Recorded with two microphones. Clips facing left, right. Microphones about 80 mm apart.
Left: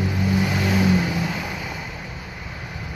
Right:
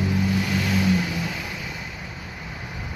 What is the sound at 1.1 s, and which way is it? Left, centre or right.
Music, centre.